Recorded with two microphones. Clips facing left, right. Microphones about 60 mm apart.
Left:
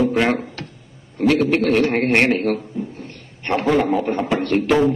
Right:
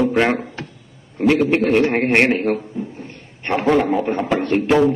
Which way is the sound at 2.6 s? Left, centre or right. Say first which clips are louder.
Even; centre.